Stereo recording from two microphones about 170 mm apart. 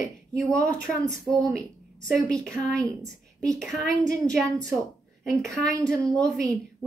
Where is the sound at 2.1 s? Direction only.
5° left (ahead or behind).